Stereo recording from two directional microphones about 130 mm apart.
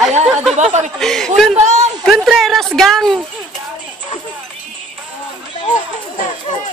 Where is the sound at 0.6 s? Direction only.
65° right (ahead or behind).